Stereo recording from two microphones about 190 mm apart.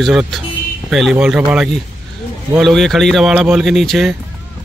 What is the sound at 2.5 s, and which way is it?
Speech, centre (ahead or behind).